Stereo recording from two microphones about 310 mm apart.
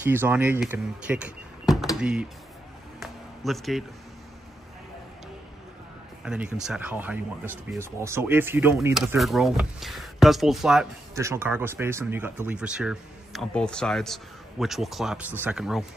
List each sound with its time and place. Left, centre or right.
0.0 s speech: centre
3.0 s a sound: centre
6.2 s speech: centre